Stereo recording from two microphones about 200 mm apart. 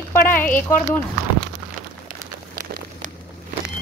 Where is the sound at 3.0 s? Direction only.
35° right (ahead or behind).